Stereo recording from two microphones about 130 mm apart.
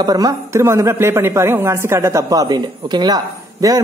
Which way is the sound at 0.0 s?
30° right (ahead or behind).